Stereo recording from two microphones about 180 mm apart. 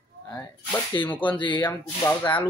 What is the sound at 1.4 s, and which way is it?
Speech, 25° left (ahead or behind).